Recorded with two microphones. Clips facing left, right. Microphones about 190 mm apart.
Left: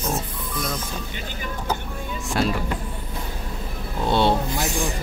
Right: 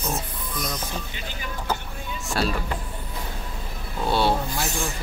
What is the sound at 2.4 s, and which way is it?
Speech, 15° left (ahead or behind).